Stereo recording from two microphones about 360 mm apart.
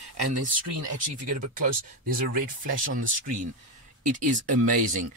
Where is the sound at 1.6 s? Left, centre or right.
Right.